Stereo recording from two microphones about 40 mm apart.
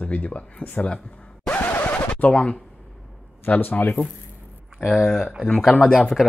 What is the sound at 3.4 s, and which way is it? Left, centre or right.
Speech, left.